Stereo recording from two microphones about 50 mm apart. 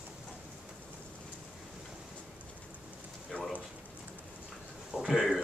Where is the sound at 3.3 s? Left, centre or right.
Left.